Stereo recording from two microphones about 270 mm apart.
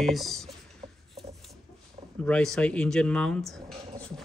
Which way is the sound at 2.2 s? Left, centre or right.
Centre.